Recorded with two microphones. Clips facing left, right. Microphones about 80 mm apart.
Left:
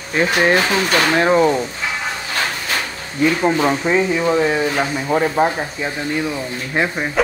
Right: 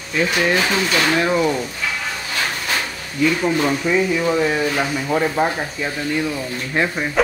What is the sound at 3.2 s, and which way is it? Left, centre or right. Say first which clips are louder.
Speech: left 2 dB; left.